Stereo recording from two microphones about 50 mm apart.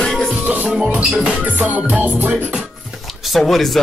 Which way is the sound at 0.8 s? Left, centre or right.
Right.